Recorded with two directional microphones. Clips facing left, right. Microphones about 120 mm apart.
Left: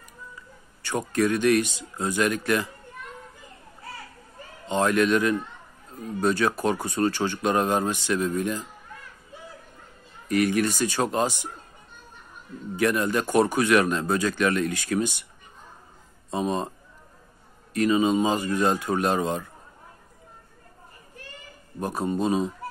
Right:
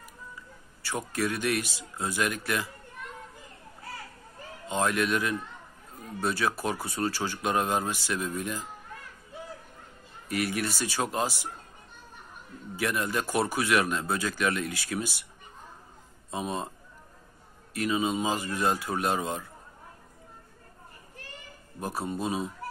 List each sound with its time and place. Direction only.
0.8 s speech: 5° right (ahead or behind)
4.6 s speech: 5° right (ahead or behind)
10.2 s speech: 5° right (ahead or behind)
12.7 s speech: 5° right (ahead or behind)
16.3 s speech: 5° right (ahead or behind)
17.7 s speech: 5° right (ahead or behind)
21.7 s speech: 5° right (ahead or behind)